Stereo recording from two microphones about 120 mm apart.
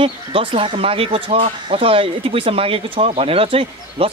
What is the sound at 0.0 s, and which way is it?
Speech, 45° right (ahead or behind).